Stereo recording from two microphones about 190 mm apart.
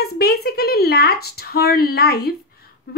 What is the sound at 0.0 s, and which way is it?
Speech, 55° left (ahead or behind).